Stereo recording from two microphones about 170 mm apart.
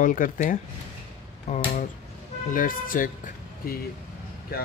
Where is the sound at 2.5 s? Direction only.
55° left (ahead or behind).